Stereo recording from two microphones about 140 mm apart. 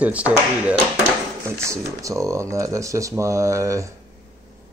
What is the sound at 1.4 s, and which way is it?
Speech, 20° right (ahead or behind).